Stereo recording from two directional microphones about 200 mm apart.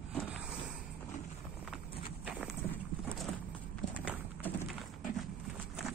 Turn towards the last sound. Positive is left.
turn(degrees=10)  # may be behind; listen again after turning